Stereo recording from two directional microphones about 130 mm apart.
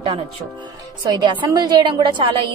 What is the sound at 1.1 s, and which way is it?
A woman's voice, 35° right (ahead or behind).